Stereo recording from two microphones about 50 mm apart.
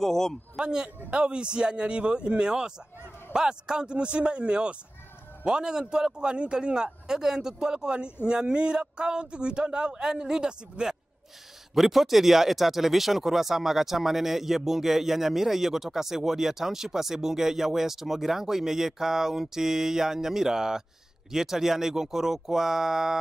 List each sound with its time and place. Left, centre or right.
0.0 s a man's voice: centre
0.6 s a man's voice: centre
11.7 s speech: centre